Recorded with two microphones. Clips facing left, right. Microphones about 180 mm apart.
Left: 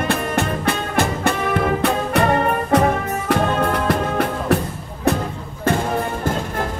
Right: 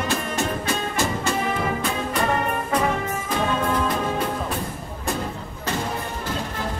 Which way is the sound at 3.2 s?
70° left (ahead or behind).